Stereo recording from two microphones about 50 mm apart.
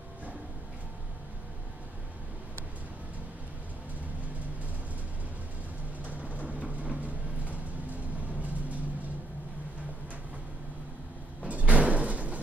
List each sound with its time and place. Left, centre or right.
6.3 s a sound: right
7.9 s music: right
11.4 s door: right